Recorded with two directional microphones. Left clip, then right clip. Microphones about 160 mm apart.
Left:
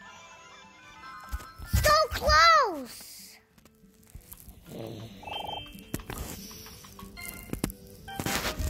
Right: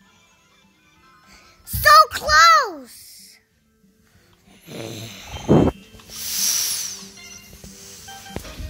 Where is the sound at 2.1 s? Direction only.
30° right (ahead or behind).